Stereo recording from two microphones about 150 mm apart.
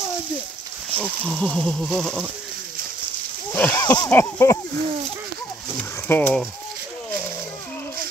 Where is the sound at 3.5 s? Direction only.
10° left (ahead or behind).